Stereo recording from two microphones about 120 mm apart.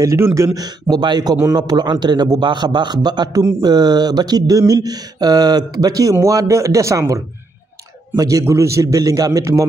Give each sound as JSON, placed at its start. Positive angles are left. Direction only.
{"t": 0.0, "sound": "a man's voice", "side_deg": -25}
{"t": 0.6, "sound": "speech", "side_deg": -35}
{"t": 8.2, "sound": "a man's voice", "side_deg": -30}